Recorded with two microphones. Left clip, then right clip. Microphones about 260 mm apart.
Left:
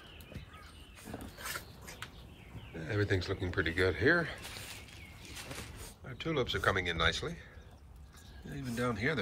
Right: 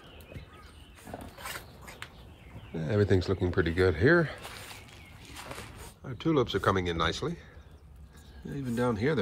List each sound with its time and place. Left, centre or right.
1.5 s a sound: right
2.8 s speech: centre
5.6 s speech: centre
8.5 s speech: centre